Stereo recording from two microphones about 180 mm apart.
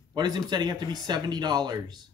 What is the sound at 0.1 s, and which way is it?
Speech, 25° right (ahead or behind).